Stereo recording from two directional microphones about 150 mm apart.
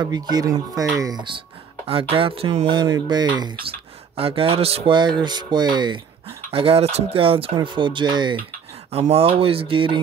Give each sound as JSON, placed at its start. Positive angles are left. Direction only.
{"t": 0.0, "sound": "speech", "side_deg": -25}
{"t": 6.5, "sound": "speech", "side_deg": -40}
{"t": 8.9, "sound": "speech", "side_deg": -40}